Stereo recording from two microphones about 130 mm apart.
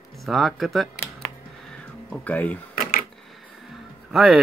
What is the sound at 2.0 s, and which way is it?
Speech, 10° left (ahead or behind).